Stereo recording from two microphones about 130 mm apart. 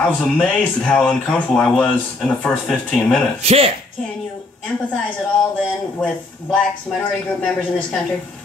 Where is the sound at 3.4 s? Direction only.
50° right (ahead or behind).